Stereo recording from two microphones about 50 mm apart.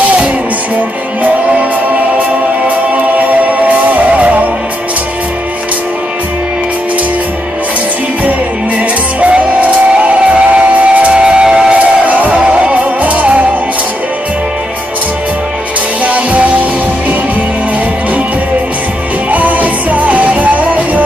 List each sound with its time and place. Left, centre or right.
1.2 s music: right
3.2 s music: right
8.3 s music: right
16.0 s music: right
19.3 s music: right